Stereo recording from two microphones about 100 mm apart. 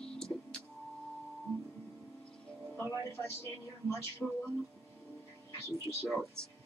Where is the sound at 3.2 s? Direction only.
30° left (ahead or behind).